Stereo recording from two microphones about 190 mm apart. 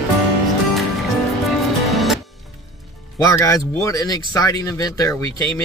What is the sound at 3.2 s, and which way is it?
Speech, 15° left (ahead or behind).